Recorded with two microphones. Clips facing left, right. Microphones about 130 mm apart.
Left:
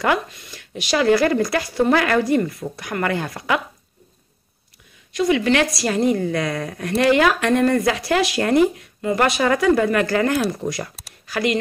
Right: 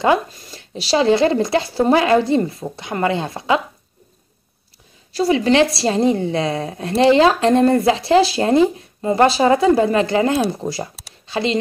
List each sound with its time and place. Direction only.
0.0 s a woman's voice: 25° right (ahead or behind)
5.1 s a woman's voice: 35° right (ahead or behind)